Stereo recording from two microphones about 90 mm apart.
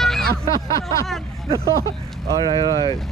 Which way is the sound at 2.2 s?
55° right (ahead or behind).